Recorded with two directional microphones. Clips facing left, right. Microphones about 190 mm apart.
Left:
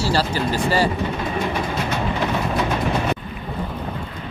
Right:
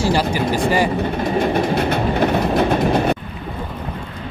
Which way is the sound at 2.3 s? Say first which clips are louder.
Right 5 dB; 40° right (ahead or behind).